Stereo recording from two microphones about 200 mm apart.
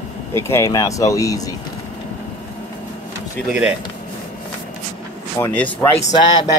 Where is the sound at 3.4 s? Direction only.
5° right (ahead or behind).